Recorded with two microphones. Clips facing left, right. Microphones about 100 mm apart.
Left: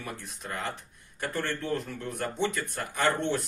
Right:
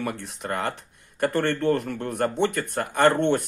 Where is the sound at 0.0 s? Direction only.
70° right (ahead or behind).